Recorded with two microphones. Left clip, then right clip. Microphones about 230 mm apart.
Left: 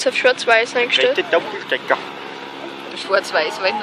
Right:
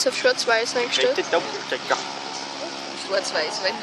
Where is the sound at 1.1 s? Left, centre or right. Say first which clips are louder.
Left 5 dB; left.